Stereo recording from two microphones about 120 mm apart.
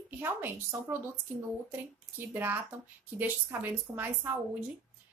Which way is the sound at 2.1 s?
15° right (ahead or behind).